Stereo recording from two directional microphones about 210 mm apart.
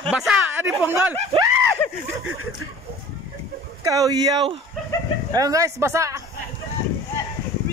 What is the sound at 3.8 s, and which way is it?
Speech, 15° right (ahead or behind).